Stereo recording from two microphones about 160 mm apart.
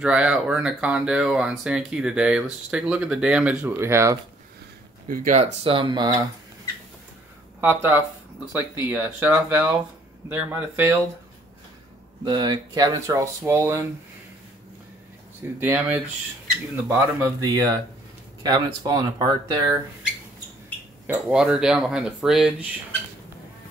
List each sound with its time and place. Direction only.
0.0 s speech: 5° right (ahead or behind)
5.0 s speech: 60° right (ahead or behind)
5.4 s speech: 40° right (ahead or behind)
7.6 s speech: 10° right (ahead or behind)
12.3 s speech: 25° right (ahead or behind)
15.6 s speech: 10° right (ahead or behind)
21.1 s speech: 5° right (ahead or behind)